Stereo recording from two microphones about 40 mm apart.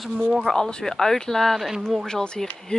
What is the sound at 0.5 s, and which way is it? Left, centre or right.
Speech, centre.